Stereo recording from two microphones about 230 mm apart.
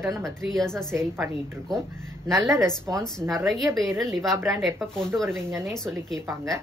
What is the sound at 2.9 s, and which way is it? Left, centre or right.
Speech, centre.